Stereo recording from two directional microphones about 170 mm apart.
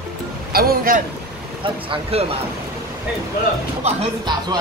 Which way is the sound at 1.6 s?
35° right (ahead or behind).